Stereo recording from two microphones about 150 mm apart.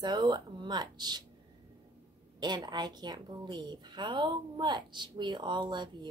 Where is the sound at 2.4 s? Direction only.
30° right (ahead or behind).